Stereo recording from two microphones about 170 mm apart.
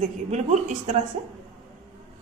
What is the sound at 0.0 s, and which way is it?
A woman's voice, 40° right (ahead or behind).